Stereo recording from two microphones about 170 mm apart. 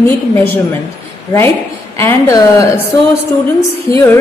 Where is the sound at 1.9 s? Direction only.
15° left (ahead or behind).